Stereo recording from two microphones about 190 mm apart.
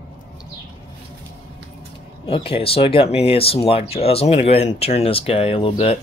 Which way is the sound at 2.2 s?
30° left (ahead or behind).